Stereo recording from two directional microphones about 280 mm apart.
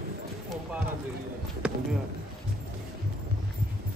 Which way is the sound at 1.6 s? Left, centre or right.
Centre.